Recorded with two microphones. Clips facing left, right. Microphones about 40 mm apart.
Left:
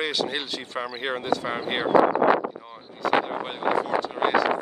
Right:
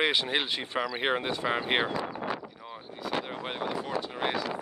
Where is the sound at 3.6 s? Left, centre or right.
Left.